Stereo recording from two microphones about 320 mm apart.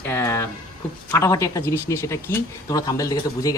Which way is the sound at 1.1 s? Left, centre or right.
Centre.